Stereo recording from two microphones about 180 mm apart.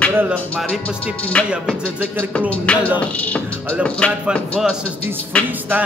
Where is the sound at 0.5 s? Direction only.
5° left (ahead or behind).